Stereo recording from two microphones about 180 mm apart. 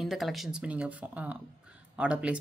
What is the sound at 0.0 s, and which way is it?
Speech, centre (ahead or behind).